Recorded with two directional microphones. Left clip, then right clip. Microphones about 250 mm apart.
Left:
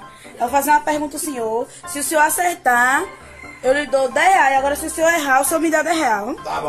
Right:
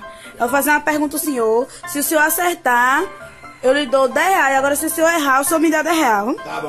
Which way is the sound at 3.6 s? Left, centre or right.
Right.